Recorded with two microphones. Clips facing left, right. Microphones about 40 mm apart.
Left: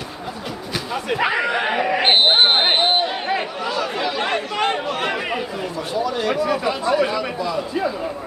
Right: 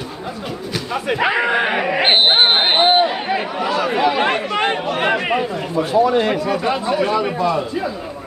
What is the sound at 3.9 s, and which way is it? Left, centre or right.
Chatter, right.